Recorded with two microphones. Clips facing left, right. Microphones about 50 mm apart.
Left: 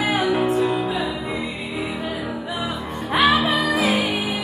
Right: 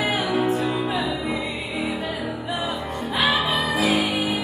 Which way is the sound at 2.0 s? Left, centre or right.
Left.